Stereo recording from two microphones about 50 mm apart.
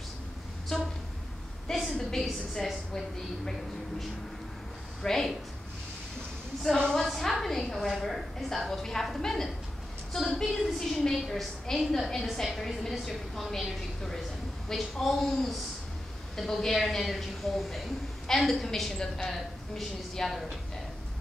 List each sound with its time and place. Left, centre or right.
1.7 s a sound: centre
2.5 s a woman's voice: centre
5.0 s a woman's voice: centre
7.2 s a woman's voice: centre